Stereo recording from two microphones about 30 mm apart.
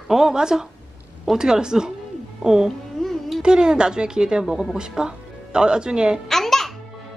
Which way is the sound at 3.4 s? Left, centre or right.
Right.